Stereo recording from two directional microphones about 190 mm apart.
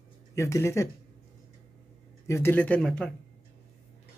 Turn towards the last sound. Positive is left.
turn(degrees=5)  # may be behind; listen again after turning